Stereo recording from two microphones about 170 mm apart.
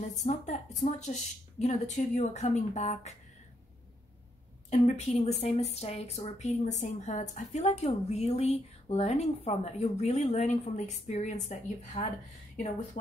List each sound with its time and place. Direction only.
0.1 s a woman's voice: 45° left (ahead or behind)
4.6 s speech: 40° left (ahead or behind)